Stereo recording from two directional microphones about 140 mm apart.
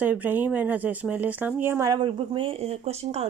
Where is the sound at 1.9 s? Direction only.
35° right (ahead or behind).